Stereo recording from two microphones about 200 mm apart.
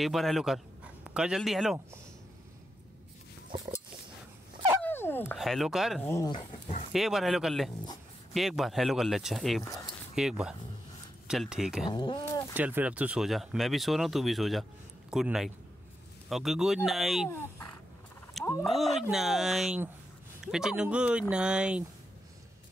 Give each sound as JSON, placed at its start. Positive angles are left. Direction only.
{"t": 0.0, "sound": "a man's voice", "side_deg": 0}
{"t": 4.8, "sound": "dog", "side_deg": 10}
{"t": 5.3, "sound": "speech", "side_deg": 0}
{"t": 6.0, "sound": "speech", "side_deg": 15}
{"t": 6.9, "sound": "speech", "side_deg": 0}
{"t": 11.9, "sound": "speech", "side_deg": 20}
{"t": 12.5, "sound": "speech", "side_deg": -5}
{"t": 17.3, "sound": "speech", "side_deg": 15}
{"t": 18.4, "sound": "a sound", "side_deg": 0}
{"t": 18.9, "sound": "speech", "side_deg": 0}